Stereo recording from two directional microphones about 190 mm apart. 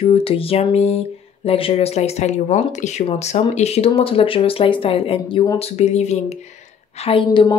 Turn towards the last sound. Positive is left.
turn(degrees=25)  # may be behind; listen again after turning